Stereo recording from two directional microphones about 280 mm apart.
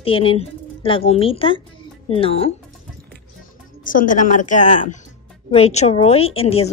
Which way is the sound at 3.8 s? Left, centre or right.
Left.